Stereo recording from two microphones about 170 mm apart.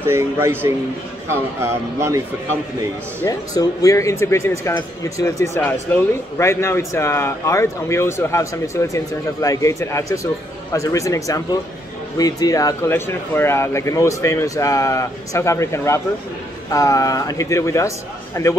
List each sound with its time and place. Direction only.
0.0 s speech: 15° right (ahead or behind)
3.2 s a man's voice: 20° left (ahead or behind)